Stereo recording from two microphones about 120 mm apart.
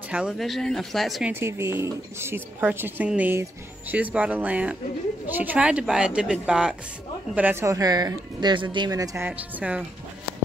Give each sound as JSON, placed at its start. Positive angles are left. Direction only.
{"t": 0.1, "sound": "speech", "side_deg": -5}
{"t": 1.3, "sound": "speech", "side_deg": -20}
{"t": 7.6, "sound": "speech", "side_deg": -30}
{"t": 9.2, "sound": "speech", "side_deg": -10}